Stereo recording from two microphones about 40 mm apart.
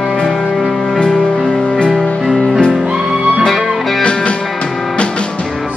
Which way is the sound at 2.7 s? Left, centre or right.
Right.